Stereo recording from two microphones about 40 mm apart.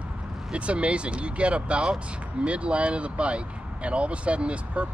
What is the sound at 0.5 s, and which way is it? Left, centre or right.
Speech, right.